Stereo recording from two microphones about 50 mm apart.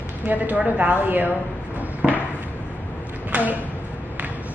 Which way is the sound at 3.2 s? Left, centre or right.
Right.